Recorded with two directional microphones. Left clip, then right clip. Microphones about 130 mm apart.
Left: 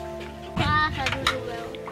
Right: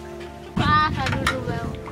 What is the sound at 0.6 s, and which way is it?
Music, 15° right (ahead or behind).